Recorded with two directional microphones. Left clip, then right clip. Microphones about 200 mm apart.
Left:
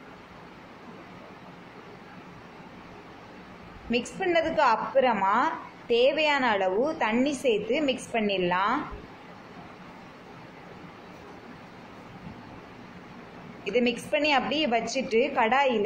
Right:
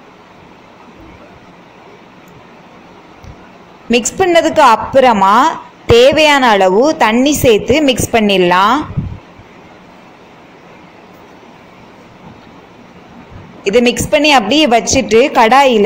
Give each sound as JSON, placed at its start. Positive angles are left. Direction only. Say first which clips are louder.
{"t": 3.9, "sound": "a woman's voice", "louder": "right 16 dB", "side_deg": -45}
{"t": 13.7, "sound": "a woman's voice", "louder": "right 15 dB", "side_deg": -50}